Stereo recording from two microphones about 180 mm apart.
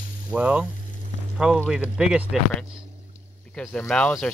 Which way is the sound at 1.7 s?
5° right (ahead or behind).